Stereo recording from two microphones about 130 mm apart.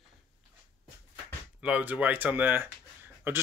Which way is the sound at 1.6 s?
10° right (ahead or behind).